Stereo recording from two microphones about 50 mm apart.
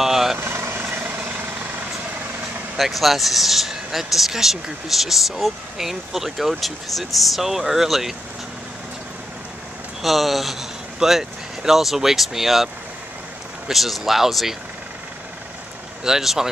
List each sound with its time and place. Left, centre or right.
0.0 s vehicle: centre
0.4 s vehicle: right
0.8 s vehicle: right
2.8 s speech: centre
10.0 s speech: centre
13.7 s speech: centre
16.0 s speech: centre